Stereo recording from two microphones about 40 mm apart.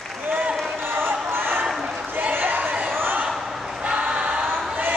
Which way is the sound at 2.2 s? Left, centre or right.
Right.